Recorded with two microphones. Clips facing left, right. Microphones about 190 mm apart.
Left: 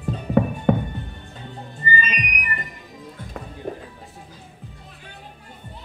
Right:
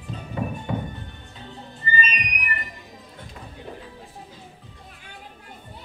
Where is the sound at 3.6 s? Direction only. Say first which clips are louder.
Left 8 dB; 50° left (ahead or behind).